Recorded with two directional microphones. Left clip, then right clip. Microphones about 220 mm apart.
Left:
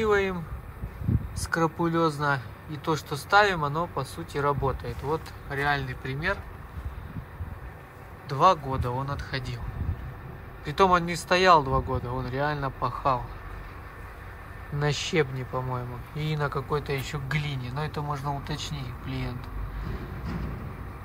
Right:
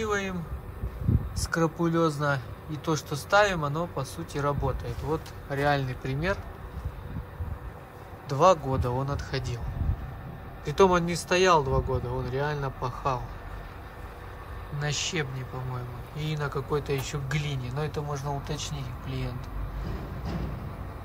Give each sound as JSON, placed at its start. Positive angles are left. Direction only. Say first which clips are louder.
{"t": 0.0, "sound": "speech", "louder": "left 5 dB", "side_deg": -10}
{"t": 1.4, "sound": "speech", "louder": "left 1 dB", "side_deg": -15}
{"t": 8.3, "sound": "speech", "louder": "even", "side_deg": -15}
{"t": 10.6, "sound": "speech", "louder": "even", "side_deg": -15}
{"t": 14.8, "sound": "speech", "louder": "left 4 dB", "side_deg": -5}